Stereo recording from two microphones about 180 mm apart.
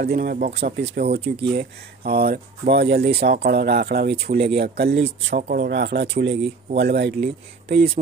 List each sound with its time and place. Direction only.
0.0 s speech: 60° right (ahead or behind)
1.2 s speech: 30° right (ahead or behind)
1.5 s speech: 60° right (ahead or behind)